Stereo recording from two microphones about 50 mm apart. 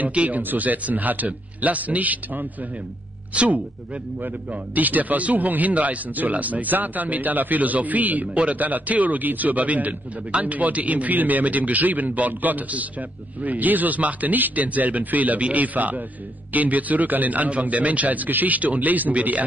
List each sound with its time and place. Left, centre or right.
0.0 s a man's voice: right